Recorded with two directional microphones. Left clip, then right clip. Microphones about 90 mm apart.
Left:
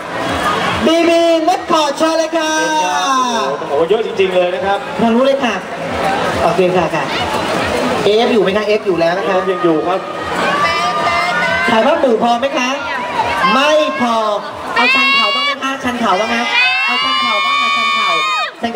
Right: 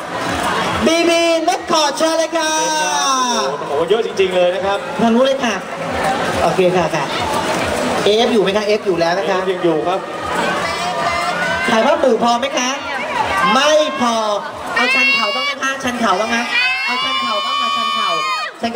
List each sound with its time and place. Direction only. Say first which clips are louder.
0.8 s a sound: left 3 dB; 20° right (ahead or behind)
3.9 s a man's voice: right 1 dB; 20° right (ahead or behind)
8.1 s a man's voice: left 2 dB; 25° right (ahead or behind)
11.7 s a man's voice: even; 20° right (ahead or behind)
14.8 s cat: left 3 dB; centre (ahead or behind)
16.2 s a sound: left 3 dB; centre (ahead or behind)